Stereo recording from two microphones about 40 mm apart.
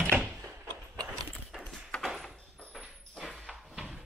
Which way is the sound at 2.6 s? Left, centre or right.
Left.